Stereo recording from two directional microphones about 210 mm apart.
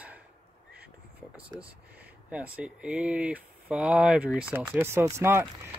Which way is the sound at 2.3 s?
5° right (ahead or behind).